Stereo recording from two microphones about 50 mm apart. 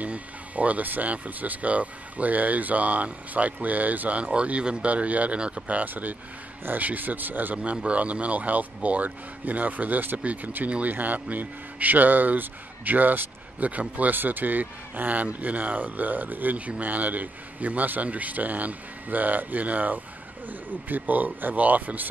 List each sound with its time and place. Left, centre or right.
0.0 s a man's voice: right
7.7 s a man's voice: right